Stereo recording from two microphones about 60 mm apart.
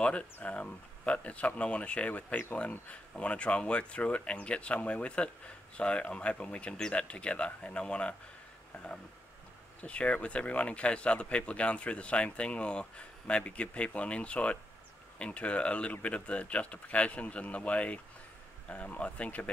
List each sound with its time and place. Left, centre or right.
0.0 s speech: left